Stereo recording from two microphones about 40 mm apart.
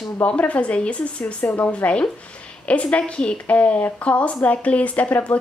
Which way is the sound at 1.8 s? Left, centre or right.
Left.